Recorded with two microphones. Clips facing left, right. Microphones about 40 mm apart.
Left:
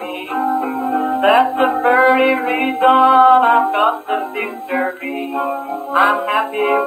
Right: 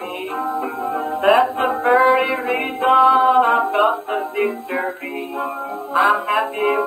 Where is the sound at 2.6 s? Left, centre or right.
Centre.